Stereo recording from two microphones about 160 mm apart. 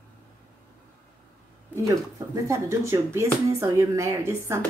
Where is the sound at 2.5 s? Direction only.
15° right (ahead or behind).